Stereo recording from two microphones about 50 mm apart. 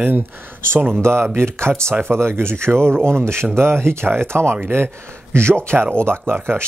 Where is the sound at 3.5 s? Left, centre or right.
Right.